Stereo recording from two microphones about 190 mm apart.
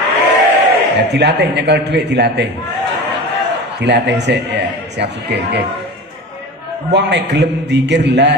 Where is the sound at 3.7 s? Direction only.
65° right (ahead or behind).